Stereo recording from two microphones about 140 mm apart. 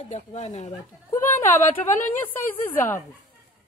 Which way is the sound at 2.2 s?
15° left (ahead or behind).